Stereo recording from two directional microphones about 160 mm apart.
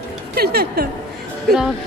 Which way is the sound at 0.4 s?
80° right.